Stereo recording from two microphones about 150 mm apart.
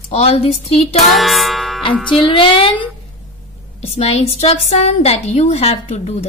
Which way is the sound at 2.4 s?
35° left (ahead or behind).